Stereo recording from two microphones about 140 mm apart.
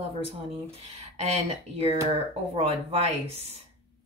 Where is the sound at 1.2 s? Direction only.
45° right (ahead or behind).